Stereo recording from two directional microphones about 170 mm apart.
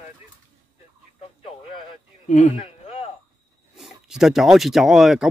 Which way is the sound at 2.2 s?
45° left (ahead or behind).